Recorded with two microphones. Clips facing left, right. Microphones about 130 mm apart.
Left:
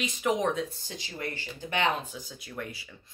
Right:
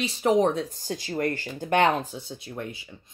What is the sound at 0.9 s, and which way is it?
Speech, 50° right (ahead or behind).